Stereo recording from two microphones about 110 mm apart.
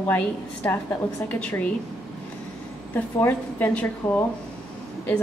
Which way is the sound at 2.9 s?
20° left (ahead or behind).